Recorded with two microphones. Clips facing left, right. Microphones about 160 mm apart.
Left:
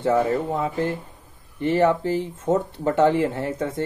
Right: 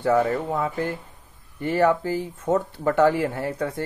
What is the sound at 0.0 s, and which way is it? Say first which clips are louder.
Speech: even; 25° left (ahead or behind).